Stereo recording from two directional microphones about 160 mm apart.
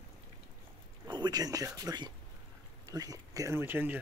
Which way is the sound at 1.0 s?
25° right (ahead or behind).